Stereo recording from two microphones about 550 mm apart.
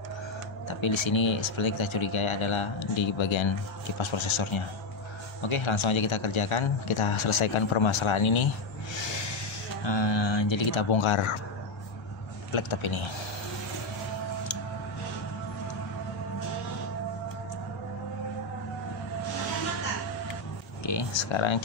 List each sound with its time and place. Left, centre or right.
0.7 s speech: left
9.8 s speech: left
12.5 s speech: left
20.8 s a sound: left